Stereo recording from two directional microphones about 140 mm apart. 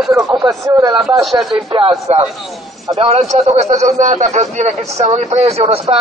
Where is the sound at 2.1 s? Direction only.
50° right (ahead or behind).